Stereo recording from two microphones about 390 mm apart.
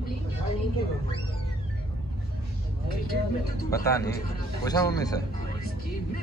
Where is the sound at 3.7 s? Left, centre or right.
Centre.